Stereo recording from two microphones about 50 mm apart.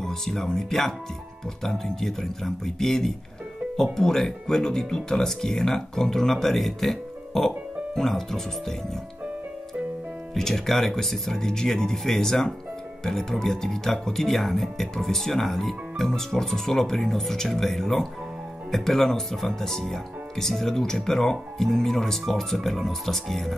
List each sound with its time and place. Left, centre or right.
0.0 s speech: centre
10.3 s speech: centre